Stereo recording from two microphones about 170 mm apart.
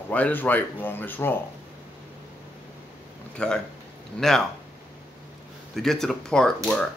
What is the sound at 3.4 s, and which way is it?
Speech, 5° left (ahead or behind).